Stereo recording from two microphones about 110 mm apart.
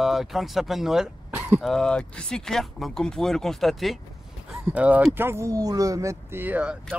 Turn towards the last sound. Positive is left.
turn(degrees=-15)  # may be behind; listen again after turning